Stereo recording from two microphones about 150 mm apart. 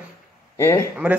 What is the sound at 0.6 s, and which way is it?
Speech, 20° left (ahead or behind).